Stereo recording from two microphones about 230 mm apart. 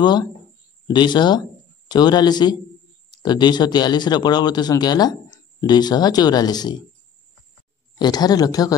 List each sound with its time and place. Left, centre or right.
0.0 s speech: centre
8.0 s speech: centre